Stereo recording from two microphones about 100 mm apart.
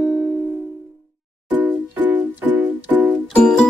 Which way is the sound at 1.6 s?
15° right (ahead or behind).